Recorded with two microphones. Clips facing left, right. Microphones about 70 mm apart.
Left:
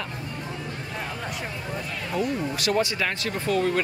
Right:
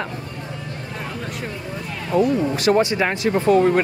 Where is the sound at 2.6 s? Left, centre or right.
Right.